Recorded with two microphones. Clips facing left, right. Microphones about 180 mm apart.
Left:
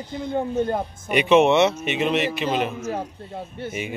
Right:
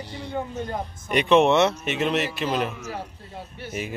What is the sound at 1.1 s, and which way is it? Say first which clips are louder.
A man's voice: left 2 dB; 5° left (ahead or behind).